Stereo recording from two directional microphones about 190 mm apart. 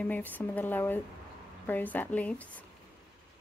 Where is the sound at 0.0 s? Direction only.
10° left (ahead or behind).